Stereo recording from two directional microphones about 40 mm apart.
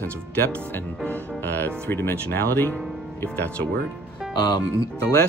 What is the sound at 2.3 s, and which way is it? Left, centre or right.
Speech, left.